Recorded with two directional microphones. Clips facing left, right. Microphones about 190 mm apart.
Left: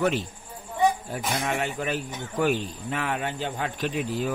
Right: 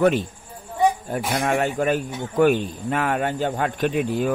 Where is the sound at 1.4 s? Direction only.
50° right (ahead or behind).